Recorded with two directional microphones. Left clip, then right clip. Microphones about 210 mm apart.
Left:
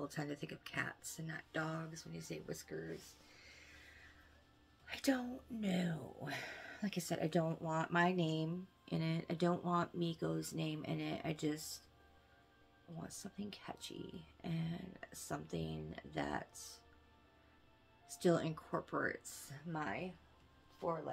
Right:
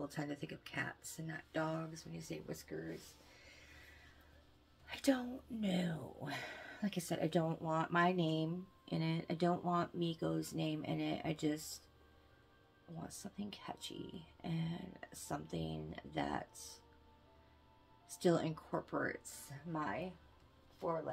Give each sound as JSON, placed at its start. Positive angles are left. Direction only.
{"t": 0.0, "sound": "speech", "side_deg": 5}
{"t": 4.8, "sound": "speech", "side_deg": 0}
{"t": 13.0, "sound": "speech", "side_deg": 0}
{"t": 18.0, "sound": "speech", "side_deg": 0}